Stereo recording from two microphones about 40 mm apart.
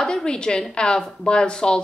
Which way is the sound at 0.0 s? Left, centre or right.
Centre.